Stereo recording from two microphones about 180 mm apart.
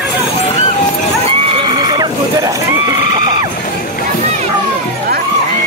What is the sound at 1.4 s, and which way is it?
Horse, 30° right (ahead or behind).